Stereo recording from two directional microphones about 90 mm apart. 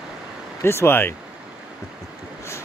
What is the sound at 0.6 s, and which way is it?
Speech, 30° left (ahead or behind).